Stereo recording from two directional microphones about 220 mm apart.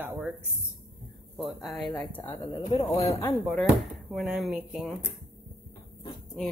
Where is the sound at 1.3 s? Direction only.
Centre (ahead or behind).